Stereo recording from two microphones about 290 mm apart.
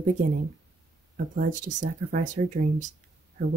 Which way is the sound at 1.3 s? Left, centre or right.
Right.